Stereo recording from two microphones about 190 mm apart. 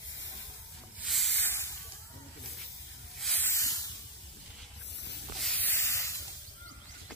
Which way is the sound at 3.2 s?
Centre (ahead or behind).